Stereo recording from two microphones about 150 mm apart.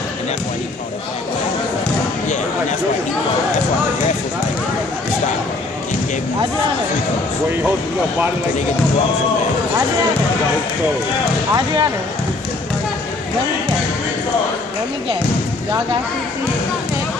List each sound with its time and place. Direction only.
11.5 s speech: 25° right (ahead or behind)